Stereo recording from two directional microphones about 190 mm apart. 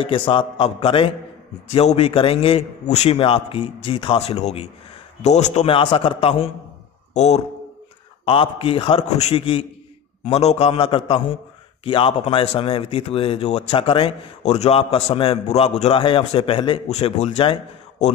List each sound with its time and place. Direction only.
0.0 s a man's voice: 25° left (ahead or behind)